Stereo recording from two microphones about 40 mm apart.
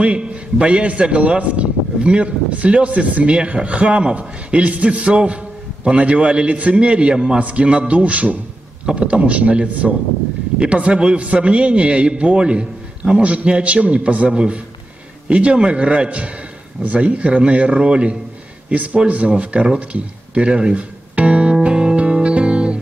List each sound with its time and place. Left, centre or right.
0.0 s a man's voice: right
13.2 s a man's voice: right
21.6 s music: right